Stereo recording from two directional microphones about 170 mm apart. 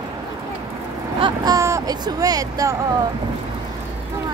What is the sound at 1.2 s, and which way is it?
Speech, 20° right (ahead or behind).